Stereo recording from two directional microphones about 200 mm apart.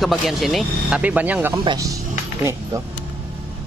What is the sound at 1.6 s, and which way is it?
Speech, 20° right (ahead or behind).